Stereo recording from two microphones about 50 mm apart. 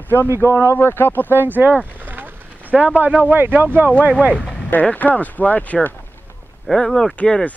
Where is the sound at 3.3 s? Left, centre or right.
Right.